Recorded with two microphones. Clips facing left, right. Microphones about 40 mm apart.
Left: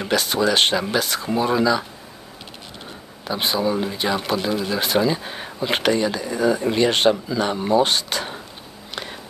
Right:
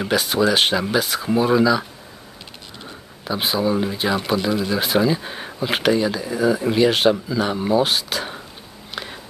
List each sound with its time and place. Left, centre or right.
0.0 s speech: centre
3.3 s speech: centre
8.9 s a sound: centre